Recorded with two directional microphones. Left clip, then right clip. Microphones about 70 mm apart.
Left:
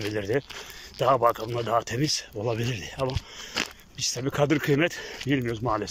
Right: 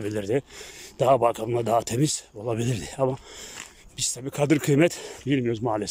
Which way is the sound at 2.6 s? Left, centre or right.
Right.